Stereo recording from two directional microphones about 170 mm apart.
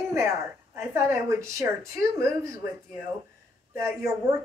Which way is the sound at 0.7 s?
20° right (ahead or behind).